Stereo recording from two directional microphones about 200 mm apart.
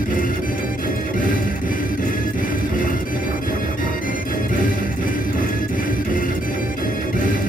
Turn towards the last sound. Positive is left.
turn(degrees=45)  # may be behind; listen again after turning